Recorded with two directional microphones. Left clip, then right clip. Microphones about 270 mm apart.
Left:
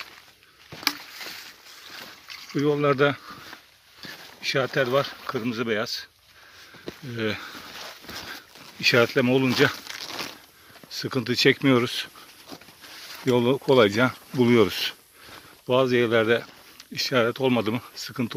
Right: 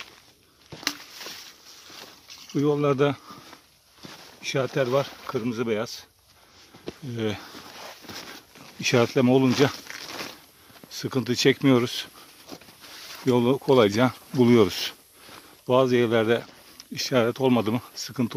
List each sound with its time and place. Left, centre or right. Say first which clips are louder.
0.7 s a sound: left 3 dB; left
2.5 s speech: left 1 dB; centre
4.4 s speech: left 2 dB; centre
7.1 s speech: left 1 dB; centre
7.8 s dog: even; left
8.8 s speech: left 2 dB; centre
9.8 s a sound: left 2 dB; left
10.9 s speech: even; centre
12.4 s a sound: right 1 dB; left
13.3 s speech: even; centre